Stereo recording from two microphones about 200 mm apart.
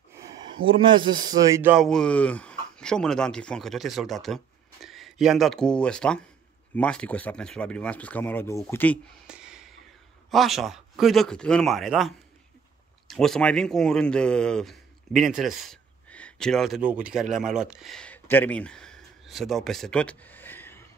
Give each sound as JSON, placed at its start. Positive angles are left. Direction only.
{"t": 0.7, "sound": "speech", "side_deg": -25}
{"t": 1.3, "sound": "speech", "side_deg": -10}
{"t": 9.3, "sound": "a sound", "side_deg": -5}
{"t": 10.3, "sound": "speech", "side_deg": 0}
{"t": 13.1, "sound": "a man's voice", "side_deg": 0}